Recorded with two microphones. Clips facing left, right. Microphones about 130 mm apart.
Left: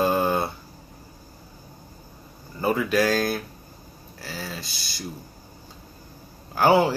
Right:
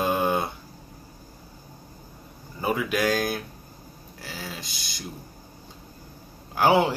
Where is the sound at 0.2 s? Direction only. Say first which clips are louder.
Left 1 dB; 15° right (ahead or behind).